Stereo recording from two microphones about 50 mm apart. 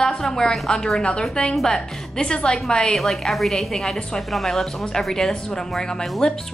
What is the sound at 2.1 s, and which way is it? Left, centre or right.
Speech, centre.